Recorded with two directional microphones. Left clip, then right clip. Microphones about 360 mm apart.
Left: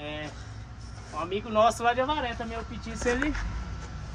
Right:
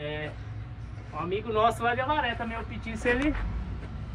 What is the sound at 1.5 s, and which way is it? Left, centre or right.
Speech, left.